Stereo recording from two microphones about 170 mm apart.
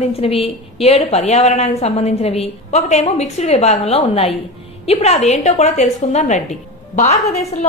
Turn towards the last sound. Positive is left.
turn(degrees=40)  # may be behind; listen again after turning